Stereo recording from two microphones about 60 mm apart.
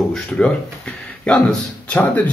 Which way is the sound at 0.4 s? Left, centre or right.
Centre.